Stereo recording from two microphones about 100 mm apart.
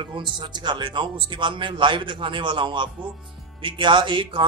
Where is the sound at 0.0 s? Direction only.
55° right (ahead or behind).